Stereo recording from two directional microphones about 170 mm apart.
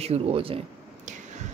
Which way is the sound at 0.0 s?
35° right (ahead or behind).